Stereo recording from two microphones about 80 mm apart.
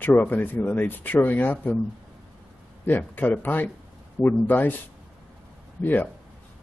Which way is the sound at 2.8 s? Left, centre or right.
Left.